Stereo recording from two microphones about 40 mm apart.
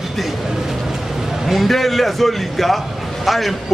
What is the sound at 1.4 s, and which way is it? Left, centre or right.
A man's voice, centre.